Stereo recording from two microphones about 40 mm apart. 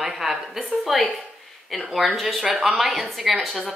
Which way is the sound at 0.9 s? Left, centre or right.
Centre.